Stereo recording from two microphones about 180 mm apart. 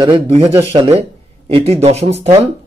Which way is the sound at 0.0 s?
25° right (ahead or behind).